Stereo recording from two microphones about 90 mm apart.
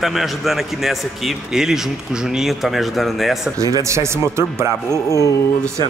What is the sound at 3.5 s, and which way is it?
Speech, 40° right (ahead or behind).